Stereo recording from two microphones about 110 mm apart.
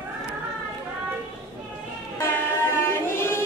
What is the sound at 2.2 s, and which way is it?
Train, 20° left (ahead or behind).